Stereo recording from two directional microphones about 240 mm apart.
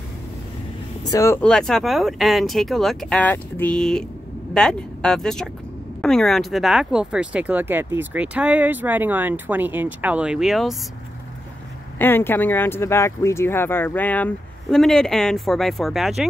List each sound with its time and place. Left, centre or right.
1.0 s speech: centre
12.0 s speech: centre